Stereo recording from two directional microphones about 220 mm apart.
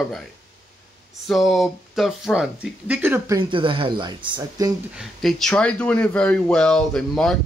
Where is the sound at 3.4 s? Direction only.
20° right (ahead or behind).